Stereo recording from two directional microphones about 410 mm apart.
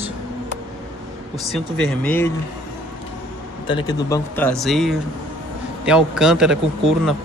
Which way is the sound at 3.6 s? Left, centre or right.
Centre.